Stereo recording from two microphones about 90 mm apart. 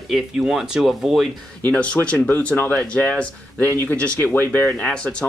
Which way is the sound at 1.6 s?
15° left (ahead or behind).